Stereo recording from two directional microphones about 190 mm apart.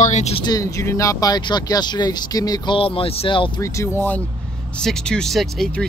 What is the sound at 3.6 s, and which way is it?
Speech, 15° left (ahead or behind).